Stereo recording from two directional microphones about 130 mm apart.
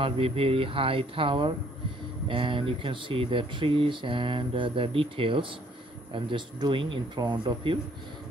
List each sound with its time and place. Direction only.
0.0 s speech: 45° right (ahead or behind)